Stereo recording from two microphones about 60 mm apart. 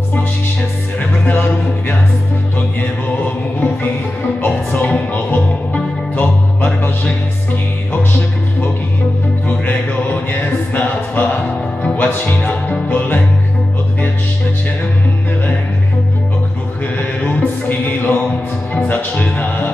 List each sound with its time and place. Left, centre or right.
0.1 s music: left
1.2 s a sound: left
4.4 s music: left
9.5 s a sound: left
11.8 s music: left
17.2 s music: left